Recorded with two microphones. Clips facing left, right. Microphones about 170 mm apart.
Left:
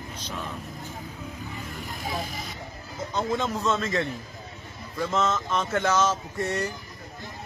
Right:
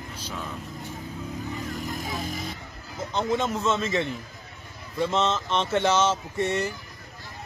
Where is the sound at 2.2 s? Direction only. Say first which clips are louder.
Right 4 dB; 50° right (ahead or behind).